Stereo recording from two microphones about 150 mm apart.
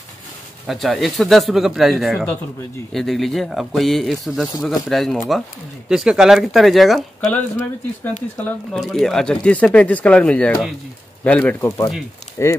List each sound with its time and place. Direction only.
0.7 s speech: centre (ahead or behind)
7.5 s speech: 10° left (ahead or behind)
11.6 s speech: 20° left (ahead or behind)